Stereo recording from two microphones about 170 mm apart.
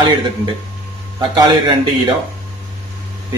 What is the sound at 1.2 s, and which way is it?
Speech, 25° right (ahead or behind).